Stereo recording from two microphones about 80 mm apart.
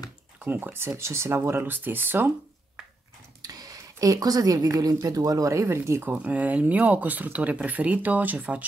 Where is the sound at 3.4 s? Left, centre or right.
Right.